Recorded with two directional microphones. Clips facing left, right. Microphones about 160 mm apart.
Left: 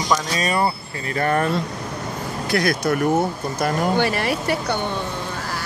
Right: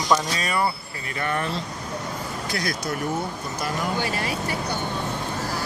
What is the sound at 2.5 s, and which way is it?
Speech, 65° left (ahead or behind).